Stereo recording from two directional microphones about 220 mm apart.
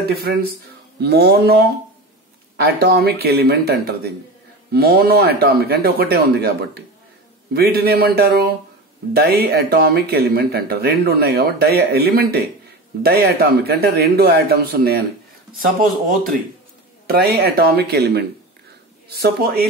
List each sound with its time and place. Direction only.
0.1 s speech: 45° right (ahead or behind)